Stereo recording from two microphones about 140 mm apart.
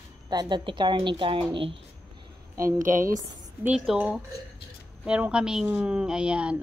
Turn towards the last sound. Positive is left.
turn(degrees=-10)  # may be behind; listen again after turning